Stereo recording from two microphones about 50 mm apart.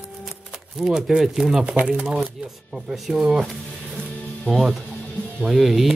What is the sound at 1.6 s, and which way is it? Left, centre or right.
Speech, right.